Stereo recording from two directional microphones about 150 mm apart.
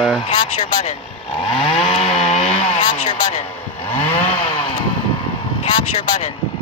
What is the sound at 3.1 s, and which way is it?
A man's voice, 30° left (ahead or behind).